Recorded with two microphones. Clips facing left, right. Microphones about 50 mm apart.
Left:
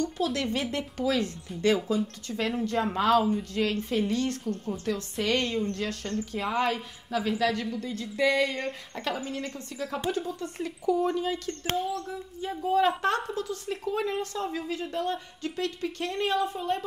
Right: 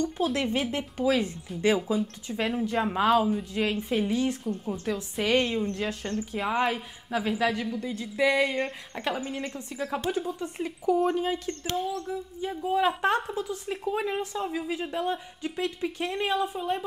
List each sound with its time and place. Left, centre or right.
0.0 s a woman's voice: right
12.1 s a woman's voice: centre